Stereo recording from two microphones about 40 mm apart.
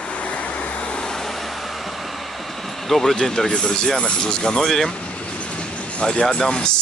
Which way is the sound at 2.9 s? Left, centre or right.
Centre.